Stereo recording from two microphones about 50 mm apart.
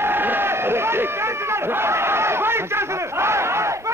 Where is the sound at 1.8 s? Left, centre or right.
Right.